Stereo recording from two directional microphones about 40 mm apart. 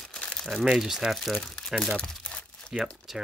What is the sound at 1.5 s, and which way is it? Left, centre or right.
Speech, centre.